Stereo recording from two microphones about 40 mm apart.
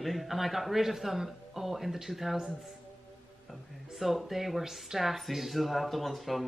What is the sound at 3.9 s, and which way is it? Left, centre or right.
Speech, centre.